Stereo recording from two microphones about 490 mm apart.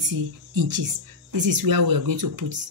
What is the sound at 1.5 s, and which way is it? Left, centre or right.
Speech, right.